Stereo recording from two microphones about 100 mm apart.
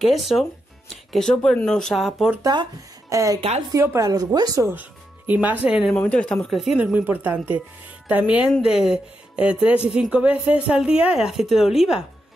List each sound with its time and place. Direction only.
0.0 s speech: centre (ahead or behind)
2.4 s speech: 50° right (ahead or behind)
3.1 s a woman's voice: 35° right (ahead or behind)
3.3 s a woman's voice: 90° right
3.7 s a woman's voice: 30° right (ahead or behind)
4.1 s a woman's voice: 40° right (ahead or behind)
4.6 s speech: 20° right (ahead or behind)
5.9 s speech: 10° left (ahead or behind)
6.5 s speech: centre (ahead or behind)
6.8 s speech: 15° right (ahead or behind)